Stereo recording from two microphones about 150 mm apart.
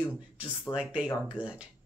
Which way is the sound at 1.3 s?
10° right (ahead or behind).